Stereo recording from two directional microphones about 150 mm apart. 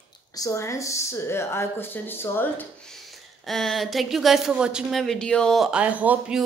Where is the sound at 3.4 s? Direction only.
Centre (ahead or behind).